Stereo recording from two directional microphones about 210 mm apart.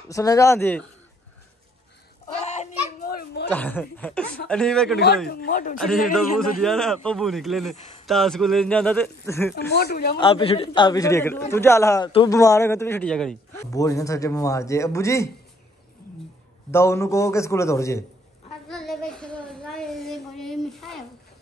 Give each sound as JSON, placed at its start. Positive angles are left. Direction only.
{"t": 0.1, "sound": "a man's voice", "side_deg": 15}
{"t": 2.4, "sound": "children playing", "side_deg": 35}
{"t": 3.5, "sound": "a man's voice", "side_deg": 10}
{"t": 4.9, "sound": "speech", "side_deg": 50}
{"t": 5.8, "sound": "speech", "side_deg": 0}
{"t": 9.6, "sound": "speech", "side_deg": 50}
{"t": 10.1, "sound": "a man's voice", "side_deg": 25}
{"t": 13.7, "sound": "a man's voice", "side_deg": 15}
{"t": 16.7, "sound": "a man's voice", "side_deg": 15}
{"t": 18.7, "sound": "a sound", "side_deg": 0}